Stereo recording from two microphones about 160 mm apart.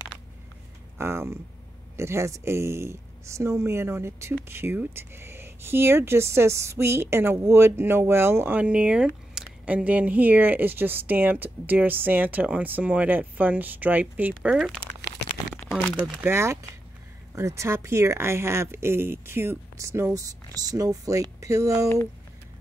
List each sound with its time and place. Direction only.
0.9 s speech: 15° right (ahead or behind)
15.6 s crumpling: 50° left (ahead or behind)
16.2 s speech: 15° right (ahead or behind)